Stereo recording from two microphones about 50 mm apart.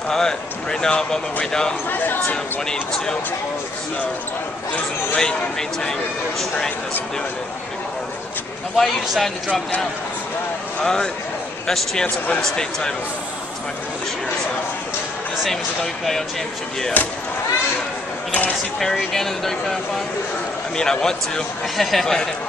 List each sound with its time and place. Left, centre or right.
0.1 s speech: centre
1.9 s speech: left
2.7 s speech: centre
5.1 s speech: centre
8.7 s a man's voice: centre
10.8 s speech: centre
15.4 s speech: centre
17.0 s speech: left
19.1 s speech: centre